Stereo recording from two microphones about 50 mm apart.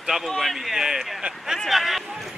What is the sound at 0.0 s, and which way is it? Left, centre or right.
Speech, centre.